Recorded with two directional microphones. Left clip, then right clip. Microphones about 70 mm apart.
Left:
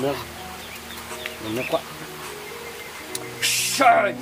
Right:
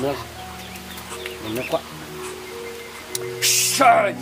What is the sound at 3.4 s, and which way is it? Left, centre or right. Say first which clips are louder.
Music: right 2 dB; right.